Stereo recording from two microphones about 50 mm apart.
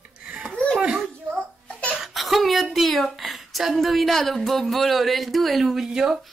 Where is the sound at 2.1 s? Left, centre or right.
Centre.